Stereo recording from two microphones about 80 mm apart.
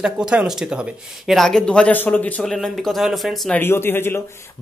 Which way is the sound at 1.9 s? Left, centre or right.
Left.